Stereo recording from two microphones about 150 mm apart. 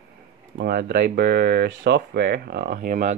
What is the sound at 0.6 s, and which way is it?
Speech, 90° right.